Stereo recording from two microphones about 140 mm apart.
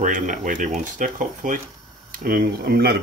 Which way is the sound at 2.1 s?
90° right.